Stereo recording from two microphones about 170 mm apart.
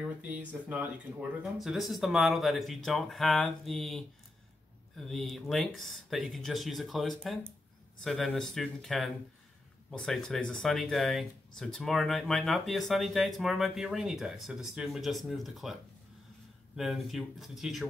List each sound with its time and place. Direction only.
0.5 s speech: 10° right (ahead or behind)